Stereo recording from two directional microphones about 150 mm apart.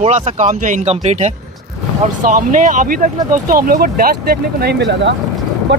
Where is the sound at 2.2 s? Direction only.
60° right (ahead or behind).